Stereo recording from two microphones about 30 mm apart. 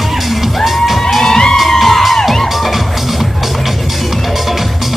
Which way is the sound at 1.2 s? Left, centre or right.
Centre.